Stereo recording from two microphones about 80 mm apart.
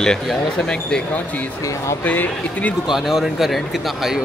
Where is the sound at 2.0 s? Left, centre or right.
Centre.